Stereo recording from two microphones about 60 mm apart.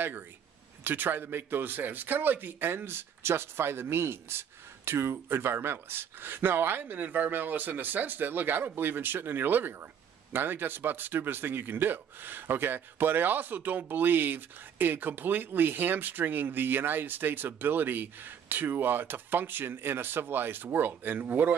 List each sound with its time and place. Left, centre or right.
0.8 s a man's voice: right